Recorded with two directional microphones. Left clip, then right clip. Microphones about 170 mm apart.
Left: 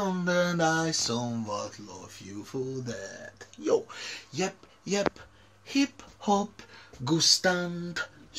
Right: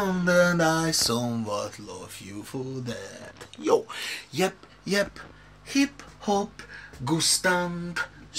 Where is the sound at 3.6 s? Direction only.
5° left (ahead or behind).